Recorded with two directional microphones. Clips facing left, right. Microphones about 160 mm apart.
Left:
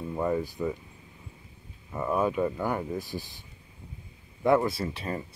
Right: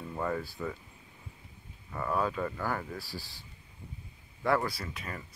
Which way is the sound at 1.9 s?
20° left (ahead or behind).